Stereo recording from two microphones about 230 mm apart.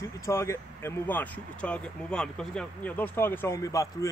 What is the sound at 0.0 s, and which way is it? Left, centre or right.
Speech, centre.